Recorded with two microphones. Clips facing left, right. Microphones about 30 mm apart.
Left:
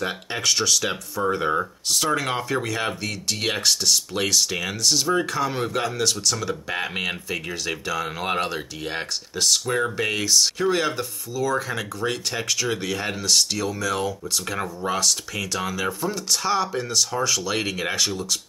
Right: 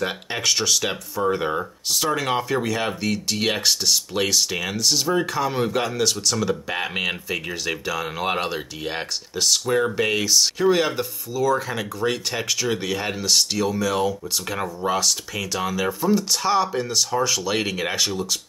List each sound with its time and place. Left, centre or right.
0.0 s speech: centre